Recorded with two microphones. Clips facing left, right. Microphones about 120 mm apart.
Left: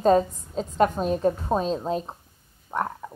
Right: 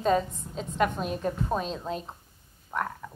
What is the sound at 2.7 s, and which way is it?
Frog, 30° left (ahead or behind).